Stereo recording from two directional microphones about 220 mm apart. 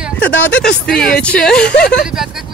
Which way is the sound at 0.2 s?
5° left (ahead or behind).